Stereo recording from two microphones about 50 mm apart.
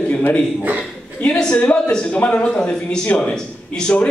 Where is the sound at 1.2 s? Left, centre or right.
Left.